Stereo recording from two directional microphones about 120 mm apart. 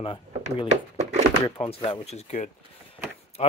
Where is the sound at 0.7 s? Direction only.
70° right (ahead or behind).